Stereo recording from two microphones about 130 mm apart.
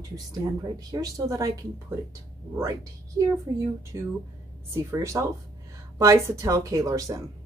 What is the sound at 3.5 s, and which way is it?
A woman's voice, 30° right (ahead or behind).